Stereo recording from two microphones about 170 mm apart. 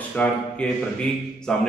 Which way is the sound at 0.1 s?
10° left (ahead or behind).